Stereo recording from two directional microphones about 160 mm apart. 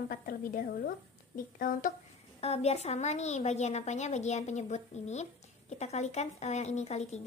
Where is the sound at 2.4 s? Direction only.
40° left (ahead or behind).